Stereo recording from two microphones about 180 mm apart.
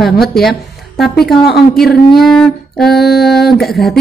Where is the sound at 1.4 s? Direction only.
65° left (ahead or behind).